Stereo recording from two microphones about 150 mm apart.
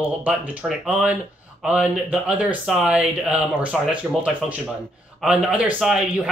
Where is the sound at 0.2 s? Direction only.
10° right (ahead or behind).